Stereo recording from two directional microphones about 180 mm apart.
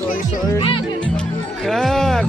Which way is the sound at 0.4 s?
25° left (ahead or behind).